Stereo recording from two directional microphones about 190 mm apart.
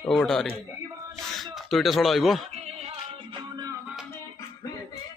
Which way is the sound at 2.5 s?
35° right (ahead or behind).